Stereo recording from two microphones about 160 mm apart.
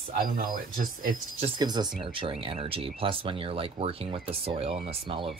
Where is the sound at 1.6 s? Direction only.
25° right (ahead or behind).